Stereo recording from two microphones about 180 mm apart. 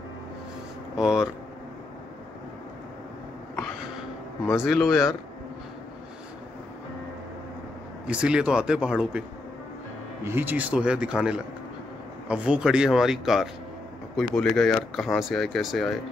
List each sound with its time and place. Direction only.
0.9 s speech: 5° right (ahead or behind)
4.6 s speech: centre (ahead or behind)
8.1 s speech: 5° right (ahead or behind)
10.2 s speech: 10° right (ahead or behind)